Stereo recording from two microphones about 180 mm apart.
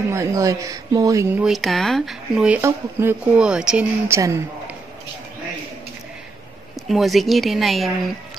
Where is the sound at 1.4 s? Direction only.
Centre (ahead or behind).